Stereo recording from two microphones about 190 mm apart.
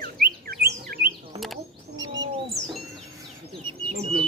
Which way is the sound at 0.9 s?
50° right (ahead or behind).